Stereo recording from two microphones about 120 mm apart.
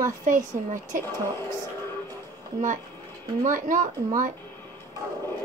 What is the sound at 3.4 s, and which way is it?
Speech, 90° right.